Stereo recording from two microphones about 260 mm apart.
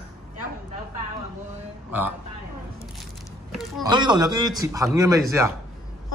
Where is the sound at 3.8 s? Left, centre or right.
Centre.